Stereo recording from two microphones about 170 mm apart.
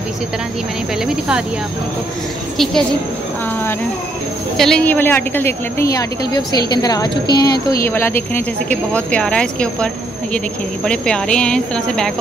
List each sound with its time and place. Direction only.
2.5 s speech: centre (ahead or behind)
4.6 s a woman's voice: 5° left (ahead or behind); by 7.6 s 25° left (ahead or behind)
7.8 s speech: 15° left (ahead or behind)